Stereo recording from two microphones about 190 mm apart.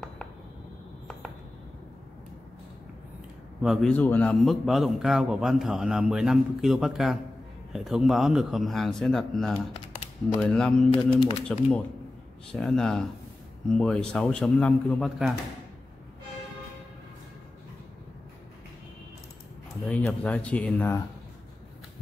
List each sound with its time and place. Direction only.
3.6 s a man's voice: centre (ahead or behind)
10.9 s speech: 25° left (ahead or behind)
12.5 s a man's voice: 5° left (ahead or behind)
19.9 s speech: 10° left (ahead or behind)